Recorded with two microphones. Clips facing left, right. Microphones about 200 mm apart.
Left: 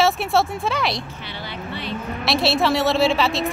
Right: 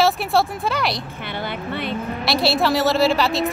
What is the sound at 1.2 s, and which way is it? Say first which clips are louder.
Speech: right 5 dB; 55° right (ahead or behind).